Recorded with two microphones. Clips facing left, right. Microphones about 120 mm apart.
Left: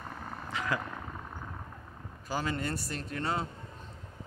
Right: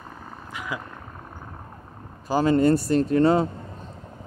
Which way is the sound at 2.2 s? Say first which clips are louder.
Right 15 dB; 35° right (ahead or behind).